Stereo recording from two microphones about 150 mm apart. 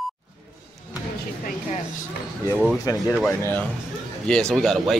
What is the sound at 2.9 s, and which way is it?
Speech, 25° left (ahead or behind).